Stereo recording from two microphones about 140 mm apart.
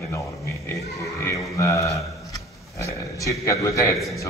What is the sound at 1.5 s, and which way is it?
A man's voice, 25° left (ahead or behind).